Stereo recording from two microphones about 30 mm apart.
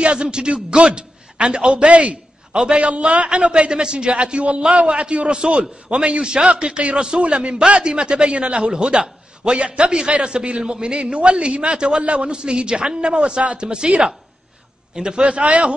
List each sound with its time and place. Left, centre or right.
0.0 s a man's voice: right
1.9 s a man's voice: right
2.5 s a man's voice: right
5.1 s a man's voice: right